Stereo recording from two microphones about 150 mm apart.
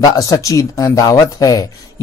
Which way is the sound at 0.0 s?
25° left (ahead or behind).